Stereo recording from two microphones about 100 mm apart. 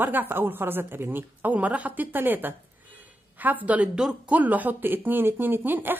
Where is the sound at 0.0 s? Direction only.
20° right (ahead or behind).